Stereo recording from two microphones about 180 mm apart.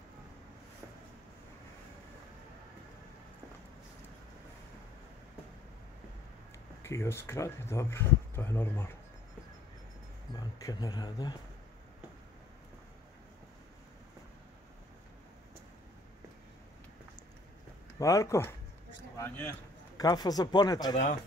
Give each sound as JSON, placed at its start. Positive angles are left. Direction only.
{"t": 6.8, "sound": "speech", "side_deg": 15}
{"t": 10.3, "sound": "speech", "side_deg": 20}
{"t": 17.9, "sound": "speech", "side_deg": 15}